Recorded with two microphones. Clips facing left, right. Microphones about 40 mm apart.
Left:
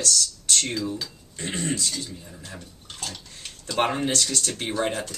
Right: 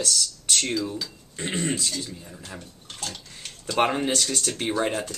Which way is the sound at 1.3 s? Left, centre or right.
Right.